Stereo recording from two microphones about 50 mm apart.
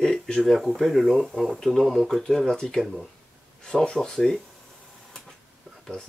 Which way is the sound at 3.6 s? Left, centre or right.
Centre.